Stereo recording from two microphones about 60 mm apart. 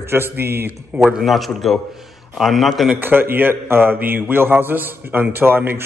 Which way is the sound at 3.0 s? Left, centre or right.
Right.